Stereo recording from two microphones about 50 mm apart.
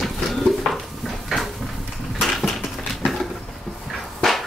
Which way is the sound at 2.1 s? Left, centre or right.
Centre.